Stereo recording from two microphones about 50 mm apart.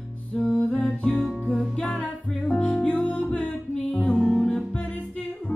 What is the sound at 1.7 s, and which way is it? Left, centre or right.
Music, centre.